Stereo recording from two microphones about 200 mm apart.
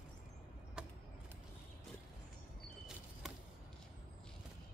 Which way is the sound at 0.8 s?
5° right (ahead or behind).